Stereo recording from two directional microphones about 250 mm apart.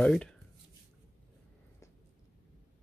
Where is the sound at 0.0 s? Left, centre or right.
Centre.